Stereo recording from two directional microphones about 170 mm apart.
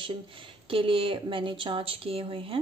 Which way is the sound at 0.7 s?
30° right (ahead or behind).